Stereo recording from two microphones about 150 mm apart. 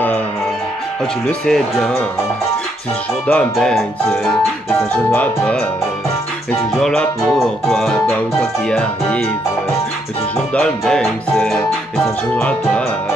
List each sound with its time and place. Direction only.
1.2 s speech: 5° left (ahead or behind)
3.3 s speech: 5° left (ahead or behind)
6.7 s speech: centre (ahead or behind)
10.5 s speech: 5° left (ahead or behind)